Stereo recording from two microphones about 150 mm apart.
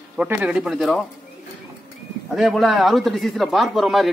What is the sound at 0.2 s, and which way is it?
Speech, 10° right (ahead or behind).